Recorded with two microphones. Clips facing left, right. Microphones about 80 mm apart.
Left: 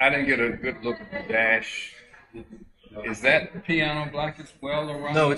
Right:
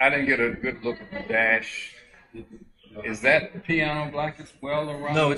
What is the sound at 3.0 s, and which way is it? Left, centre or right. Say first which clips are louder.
A man's voice: right 1 dB; centre.